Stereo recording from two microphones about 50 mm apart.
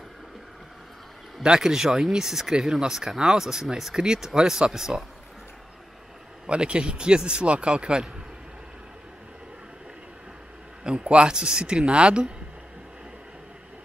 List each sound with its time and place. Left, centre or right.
1.4 s speech: centre
6.4 s speech: right
10.8 s speech: right